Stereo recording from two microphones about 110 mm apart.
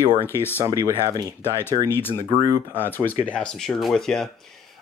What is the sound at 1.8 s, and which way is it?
Speech, 20° left (ahead or behind).